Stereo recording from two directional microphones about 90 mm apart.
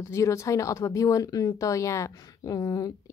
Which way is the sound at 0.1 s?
35° left (ahead or behind).